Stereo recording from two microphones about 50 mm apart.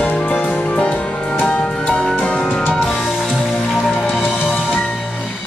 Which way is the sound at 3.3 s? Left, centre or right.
Centre.